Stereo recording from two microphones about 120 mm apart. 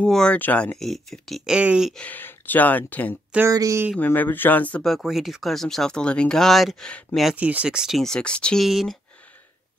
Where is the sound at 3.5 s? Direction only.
30° right (ahead or behind).